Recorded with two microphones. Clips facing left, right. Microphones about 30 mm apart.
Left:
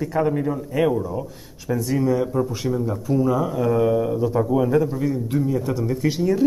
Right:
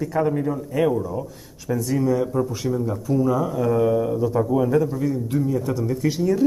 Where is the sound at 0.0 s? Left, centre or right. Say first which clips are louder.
Even; left.